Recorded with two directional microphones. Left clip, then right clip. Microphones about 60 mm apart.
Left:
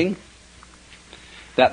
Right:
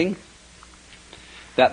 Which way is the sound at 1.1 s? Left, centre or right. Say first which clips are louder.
Even; right.